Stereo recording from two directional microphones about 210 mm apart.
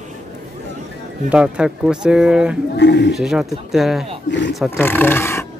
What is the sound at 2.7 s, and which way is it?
Speech, 55° left (ahead or behind).